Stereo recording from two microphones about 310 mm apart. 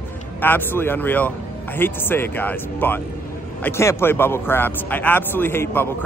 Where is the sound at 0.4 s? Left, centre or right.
Centre.